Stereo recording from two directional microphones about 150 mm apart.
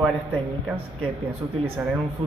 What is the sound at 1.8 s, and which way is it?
Speech, 10° right (ahead or behind).